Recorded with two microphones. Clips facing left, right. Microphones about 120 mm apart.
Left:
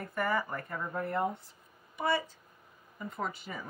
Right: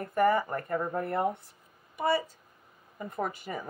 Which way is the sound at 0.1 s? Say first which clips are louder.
Right 7 dB; 50° right (ahead or behind).